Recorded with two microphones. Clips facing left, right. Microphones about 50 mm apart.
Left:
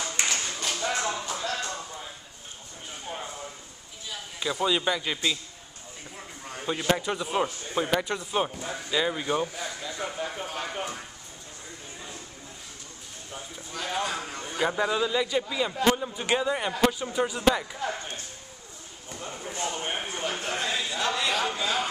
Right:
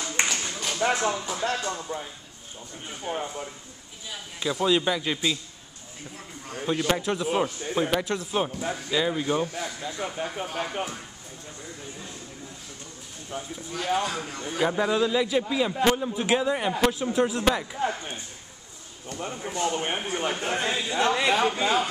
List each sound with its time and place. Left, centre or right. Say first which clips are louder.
0.3 s a sound: even; centre
1.1 s a man's voice: right 2 dB; centre
1.9 s speech: right 7 dB; right
3.1 s a man's voice: right 6 dB; right
4.1 s a man's voice: right 2 dB; centre
13.3 s a man's voice: right 5 dB; centre
17.7 s a man's voice: right 4 dB; right